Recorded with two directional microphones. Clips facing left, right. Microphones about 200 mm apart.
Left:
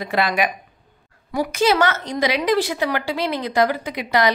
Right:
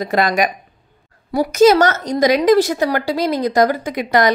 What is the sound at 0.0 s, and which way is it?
A woman's voice, 45° right (ahead or behind).